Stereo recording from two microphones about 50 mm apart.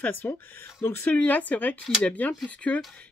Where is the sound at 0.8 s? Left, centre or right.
Left.